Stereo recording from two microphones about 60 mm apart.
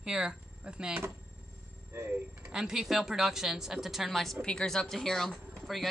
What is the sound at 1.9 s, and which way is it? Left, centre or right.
Speech, right.